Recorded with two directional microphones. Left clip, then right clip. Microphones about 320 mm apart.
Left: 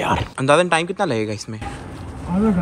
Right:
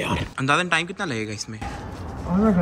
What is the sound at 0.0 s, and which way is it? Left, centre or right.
Speech, centre.